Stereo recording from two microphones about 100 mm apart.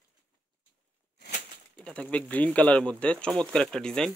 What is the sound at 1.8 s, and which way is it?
Speech, 10° left (ahead or behind).